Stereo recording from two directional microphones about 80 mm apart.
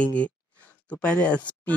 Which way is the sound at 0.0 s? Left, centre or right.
Centre.